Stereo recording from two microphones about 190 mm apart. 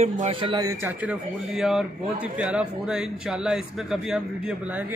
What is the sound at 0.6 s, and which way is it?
A man's voice, 15° right (ahead or behind).